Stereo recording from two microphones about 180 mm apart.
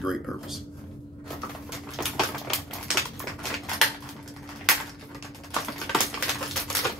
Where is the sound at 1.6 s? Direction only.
Centre (ahead or behind).